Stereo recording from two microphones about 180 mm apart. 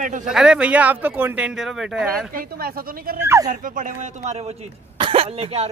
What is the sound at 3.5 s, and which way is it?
Speech, 50° right (ahead or behind).